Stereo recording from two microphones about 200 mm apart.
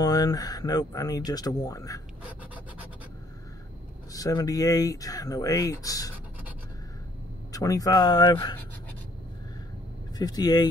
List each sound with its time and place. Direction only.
0.0 s speech: 20° left (ahead or behind)
2.2 s scratch: 5° right (ahead or behind)
4.1 s speech: 15° left (ahead or behind)
7.5 s speech: 15° left (ahead or behind)
10.1 s speech: 20° left (ahead or behind)